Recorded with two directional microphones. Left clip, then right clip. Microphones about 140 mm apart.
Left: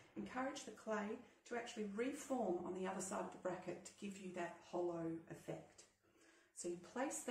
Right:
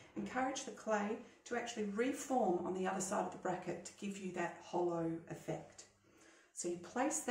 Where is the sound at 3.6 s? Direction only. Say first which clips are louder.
Right 6 dB; 20° right (ahead or behind).